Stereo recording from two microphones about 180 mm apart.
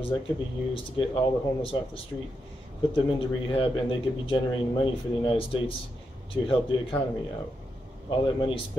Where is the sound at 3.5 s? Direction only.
30° left (ahead or behind).